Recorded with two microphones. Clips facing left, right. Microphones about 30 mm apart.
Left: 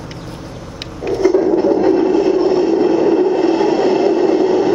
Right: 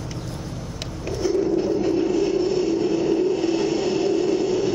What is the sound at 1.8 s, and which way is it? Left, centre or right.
Vehicle, left.